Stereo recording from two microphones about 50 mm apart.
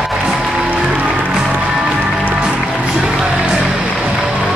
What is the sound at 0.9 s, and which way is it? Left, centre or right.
Music, right.